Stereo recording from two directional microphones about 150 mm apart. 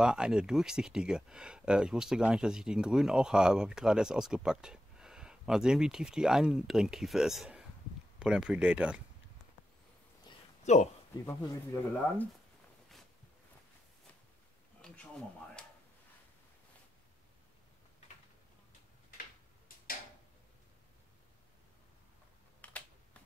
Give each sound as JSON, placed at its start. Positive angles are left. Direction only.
{"t": 0.0, "sound": "speech", "side_deg": -5}
{"t": 10.6, "sound": "a man's voice", "side_deg": 50}
{"t": 11.2, "sound": "speech", "side_deg": 20}
{"t": 22.6, "sound": "computer keyboard", "side_deg": 10}